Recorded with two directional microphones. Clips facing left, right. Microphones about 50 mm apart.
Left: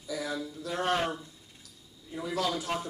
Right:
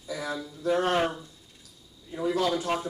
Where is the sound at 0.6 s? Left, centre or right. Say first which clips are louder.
Right 10 dB; right.